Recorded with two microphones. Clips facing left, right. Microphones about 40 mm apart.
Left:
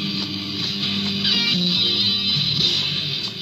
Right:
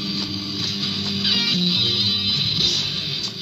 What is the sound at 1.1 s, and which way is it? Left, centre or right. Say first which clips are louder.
Music: right 1 dB; centre.